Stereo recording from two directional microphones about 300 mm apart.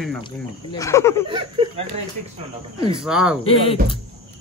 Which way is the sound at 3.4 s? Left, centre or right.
Centre.